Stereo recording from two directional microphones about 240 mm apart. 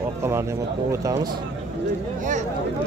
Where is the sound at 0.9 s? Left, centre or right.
Centre.